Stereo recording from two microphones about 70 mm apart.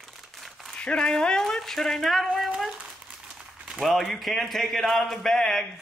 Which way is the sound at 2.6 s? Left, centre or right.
Centre.